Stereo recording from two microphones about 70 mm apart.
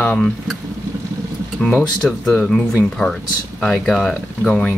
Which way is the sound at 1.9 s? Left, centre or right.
Centre.